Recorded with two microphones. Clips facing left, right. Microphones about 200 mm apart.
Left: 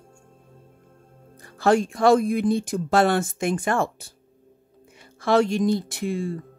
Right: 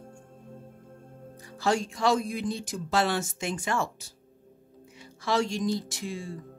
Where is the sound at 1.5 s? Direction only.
55° left (ahead or behind).